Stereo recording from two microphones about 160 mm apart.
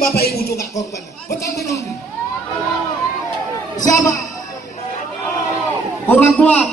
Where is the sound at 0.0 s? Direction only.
75° left (ahead or behind).